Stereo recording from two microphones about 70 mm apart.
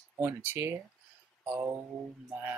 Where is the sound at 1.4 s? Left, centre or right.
Right.